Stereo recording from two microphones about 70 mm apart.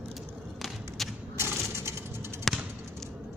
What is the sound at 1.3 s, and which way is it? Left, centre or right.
Coin, right.